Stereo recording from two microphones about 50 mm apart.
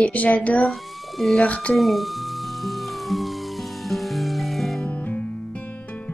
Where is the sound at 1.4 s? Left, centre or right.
Left.